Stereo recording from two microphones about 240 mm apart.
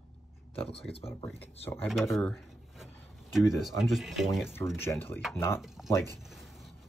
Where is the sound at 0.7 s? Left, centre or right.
Left.